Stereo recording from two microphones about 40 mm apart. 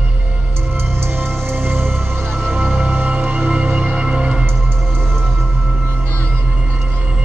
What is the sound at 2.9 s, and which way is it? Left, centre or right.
Music, right.